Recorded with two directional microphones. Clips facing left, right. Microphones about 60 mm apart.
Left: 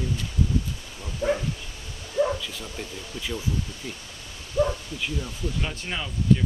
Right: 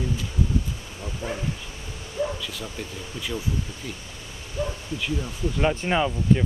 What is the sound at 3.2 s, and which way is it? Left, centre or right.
Speech, centre.